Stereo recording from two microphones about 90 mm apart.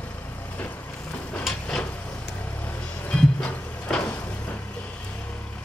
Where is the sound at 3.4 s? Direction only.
15° left (ahead or behind).